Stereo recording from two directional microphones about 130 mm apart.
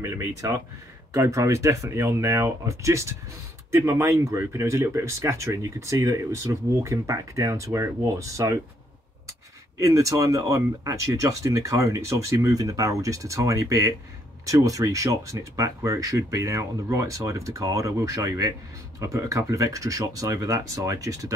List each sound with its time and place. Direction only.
0.0 s speech: 20° right (ahead or behind)
9.8 s speech: 25° right (ahead or behind)